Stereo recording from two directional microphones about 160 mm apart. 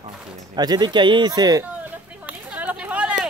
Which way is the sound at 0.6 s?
25° right (ahead or behind).